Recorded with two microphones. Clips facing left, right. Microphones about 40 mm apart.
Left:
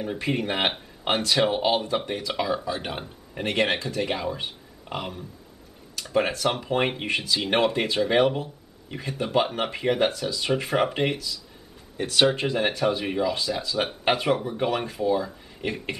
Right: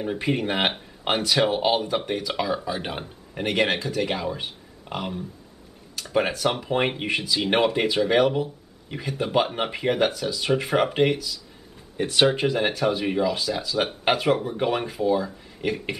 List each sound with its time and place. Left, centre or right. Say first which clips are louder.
0.0 s speech: right 2 dB; centre
2.6 s speech: right 1 dB; centre
6.1 s speech: right 1 dB; centre
12.0 s speech: right 1 dB; centre
12.4 s speech: right 1 dB; centre